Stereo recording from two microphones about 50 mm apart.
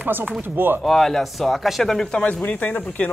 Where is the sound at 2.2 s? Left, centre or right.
Left.